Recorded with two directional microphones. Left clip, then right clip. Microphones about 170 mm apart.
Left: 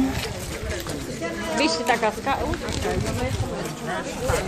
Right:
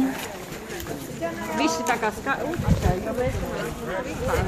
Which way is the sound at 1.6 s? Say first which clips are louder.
Left 2 dB; 50° right (ahead or behind).